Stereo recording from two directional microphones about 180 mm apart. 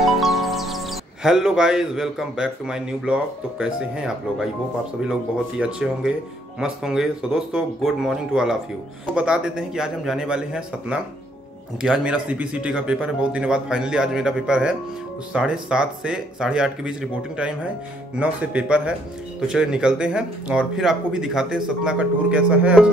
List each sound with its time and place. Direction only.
0.0 s speech: centre (ahead or behind)
5.6 s speech: 5° right (ahead or behind)